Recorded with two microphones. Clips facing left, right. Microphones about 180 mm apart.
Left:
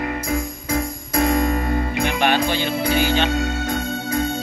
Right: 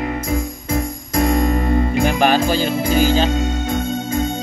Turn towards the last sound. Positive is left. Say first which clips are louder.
# right 2 dB
turn(degrees=-20)  # may be behind; listen again after turning